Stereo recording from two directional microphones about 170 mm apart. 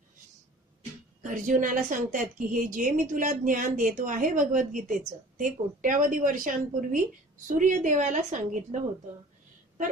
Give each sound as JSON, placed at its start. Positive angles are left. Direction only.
{"t": 1.2, "sound": "a woman's voice", "side_deg": -50}